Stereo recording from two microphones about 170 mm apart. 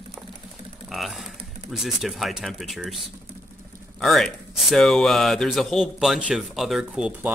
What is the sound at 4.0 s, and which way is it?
Speech, centre (ahead or behind).